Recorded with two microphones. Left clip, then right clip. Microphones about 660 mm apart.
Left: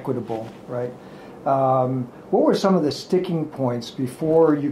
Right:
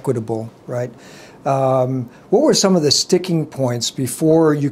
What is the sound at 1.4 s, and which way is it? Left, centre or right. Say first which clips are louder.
Speech: right 3 dB; right.